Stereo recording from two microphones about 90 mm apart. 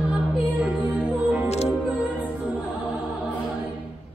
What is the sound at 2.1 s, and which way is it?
Choir, 15° right (ahead or behind).